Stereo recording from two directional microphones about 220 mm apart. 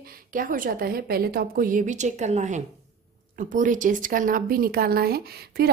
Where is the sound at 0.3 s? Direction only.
40° right (ahead or behind).